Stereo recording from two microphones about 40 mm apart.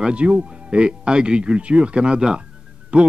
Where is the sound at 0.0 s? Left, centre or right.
Right.